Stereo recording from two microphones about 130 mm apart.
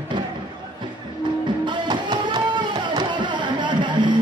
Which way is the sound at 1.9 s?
35° right (ahead or behind).